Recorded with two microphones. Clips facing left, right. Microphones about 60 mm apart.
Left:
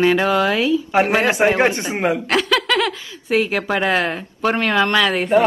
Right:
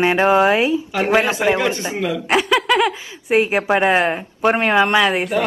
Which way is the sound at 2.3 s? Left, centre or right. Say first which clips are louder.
Right 2 dB; centre.